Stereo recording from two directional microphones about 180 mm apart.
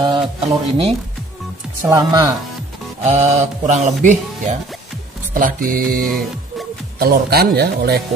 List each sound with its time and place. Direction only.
0.0 s speech: 30° right (ahead or behind)
1.9 s speech: 20° right (ahead or behind)
3.0 s a man's voice: 35° right (ahead or behind); by 8.0 s 60° right (ahead or behind)